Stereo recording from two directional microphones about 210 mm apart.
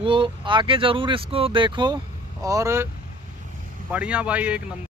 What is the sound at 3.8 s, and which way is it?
Speech, 5° right (ahead or behind).